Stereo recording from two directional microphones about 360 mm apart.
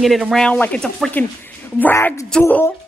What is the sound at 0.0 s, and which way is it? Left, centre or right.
Speech, centre.